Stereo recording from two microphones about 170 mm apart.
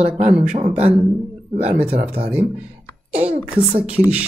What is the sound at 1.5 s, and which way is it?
Speech, 40° right (ahead or behind).